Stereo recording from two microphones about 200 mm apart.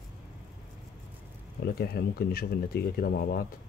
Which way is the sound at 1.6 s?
50° left (ahead or behind).